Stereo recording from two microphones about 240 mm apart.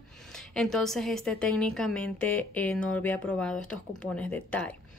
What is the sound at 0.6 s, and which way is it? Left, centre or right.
Speech, centre.